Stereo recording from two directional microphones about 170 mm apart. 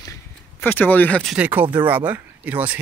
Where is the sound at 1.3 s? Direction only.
10° right (ahead or behind).